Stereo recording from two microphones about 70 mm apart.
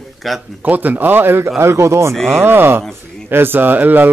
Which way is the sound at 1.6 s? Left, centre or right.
Right.